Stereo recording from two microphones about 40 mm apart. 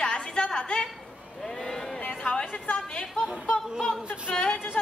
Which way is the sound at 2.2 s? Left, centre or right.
Left.